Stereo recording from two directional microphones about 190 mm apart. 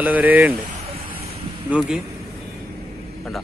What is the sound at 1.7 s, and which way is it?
Speech, 5° right (ahead or behind).